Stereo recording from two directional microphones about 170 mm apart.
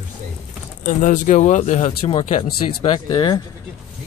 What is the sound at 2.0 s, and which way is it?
Speech, 30° left (ahead or behind).